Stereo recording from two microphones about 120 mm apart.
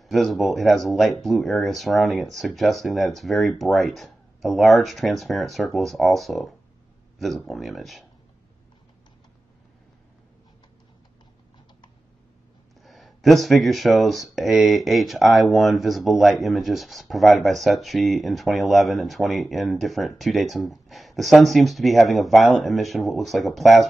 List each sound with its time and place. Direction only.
0.0 s speech: centre (ahead or behind)
12.8 s speech: centre (ahead or behind)